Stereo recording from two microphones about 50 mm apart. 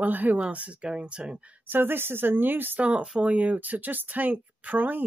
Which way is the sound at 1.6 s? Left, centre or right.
Right.